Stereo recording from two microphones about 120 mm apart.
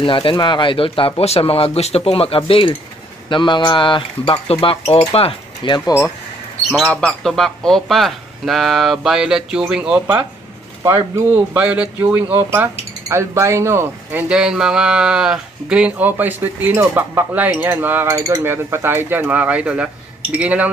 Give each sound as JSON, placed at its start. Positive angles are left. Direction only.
{"t": 0.0, "sound": "speech", "side_deg": 45}
{"t": 6.9, "sound": "speech", "side_deg": 5}
{"t": 11.1, "sound": "speech", "side_deg": -20}
{"t": 14.3, "sound": "speech", "side_deg": -5}